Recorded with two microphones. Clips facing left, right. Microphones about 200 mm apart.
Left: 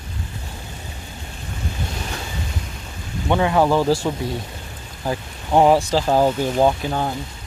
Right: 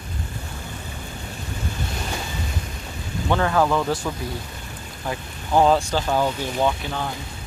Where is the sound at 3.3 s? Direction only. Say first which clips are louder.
Left 3 dB; 20° left (ahead or behind).